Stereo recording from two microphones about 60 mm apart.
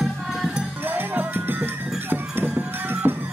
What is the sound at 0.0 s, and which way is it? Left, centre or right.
Music, centre.